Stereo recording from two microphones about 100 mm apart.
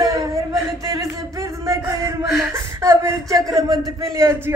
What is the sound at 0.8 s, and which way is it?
A man's voice, 30° right (ahead or behind).